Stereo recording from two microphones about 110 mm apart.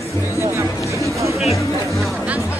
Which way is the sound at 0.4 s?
25° right (ahead or behind).